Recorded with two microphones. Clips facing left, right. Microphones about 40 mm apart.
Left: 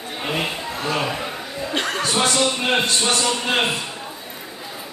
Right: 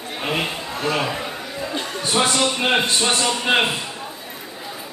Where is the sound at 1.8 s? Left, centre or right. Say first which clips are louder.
Left 5 dB; left.